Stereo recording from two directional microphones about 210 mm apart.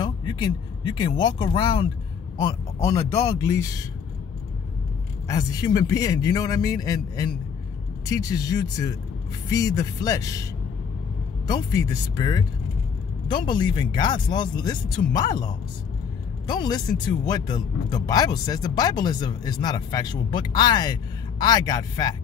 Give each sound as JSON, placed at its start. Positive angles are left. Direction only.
{"t": 0.0, "sound": "speech", "side_deg": 20}
{"t": 5.3, "sound": "speech", "side_deg": 15}
{"t": 11.4, "sound": "speech", "side_deg": 20}